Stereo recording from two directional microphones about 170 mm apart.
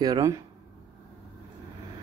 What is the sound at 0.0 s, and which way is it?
Speech, 20° right (ahead or behind).